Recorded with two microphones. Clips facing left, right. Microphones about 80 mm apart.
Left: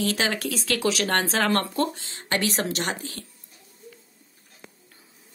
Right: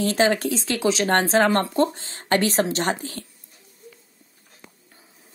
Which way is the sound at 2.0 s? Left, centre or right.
Right.